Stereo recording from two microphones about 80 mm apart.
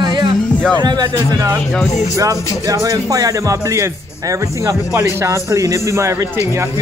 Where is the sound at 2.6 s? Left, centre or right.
Right.